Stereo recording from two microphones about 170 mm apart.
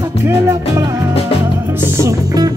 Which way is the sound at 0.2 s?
15° right (ahead or behind).